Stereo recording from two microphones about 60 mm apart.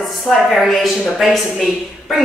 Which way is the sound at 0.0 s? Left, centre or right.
Centre.